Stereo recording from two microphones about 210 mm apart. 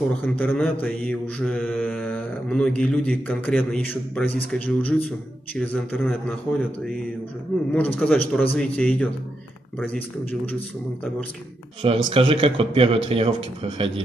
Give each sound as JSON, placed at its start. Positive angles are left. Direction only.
{"t": 0.2, "sound": "mantra", "side_deg": 10}
{"t": 7.7, "sound": "mantra", "side_deg": 5}
{"t": 11.8, "sound": "speech", "side_deg": -25}